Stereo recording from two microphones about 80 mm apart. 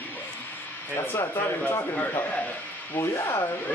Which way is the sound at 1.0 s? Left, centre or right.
Left.